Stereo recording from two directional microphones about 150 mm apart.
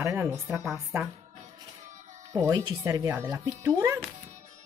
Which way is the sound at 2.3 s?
20° right (ahead or behind).